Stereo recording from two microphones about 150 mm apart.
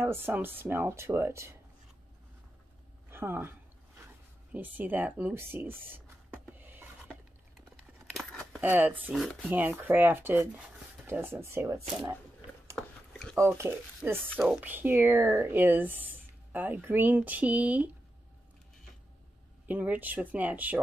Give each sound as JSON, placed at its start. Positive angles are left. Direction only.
{"t": 0.0, "sound": "speech", "side_deg": -15}
{"t": 3.1, "sound": "speech", "side_deg": -15}
{"t": 4.0, "sound": "a sound", "side_deg": -10}
{"t": 7.7, "sound": "a sound", "side_deg": 0}
{"t": 8.5, "sound": "speech", "side_deg": -10}
{"t": 9.1, "sound": "speech", "side_deg": 0}
{"t": 9.5, "sound": "speech", "side_deg": -10}
{"t": 12.7, "sound": "a sound", "side_deg": 5}
{"t": 13.4, "sound": "speech", "side_deg": -15}
{"t": 14.3, "sound": "speech", "side_deg": 5}
{"t": 14.6, "sound": "speech", "side_deg": -15}
{"t": 19.7, "sound": "speech", "side_deg": -10}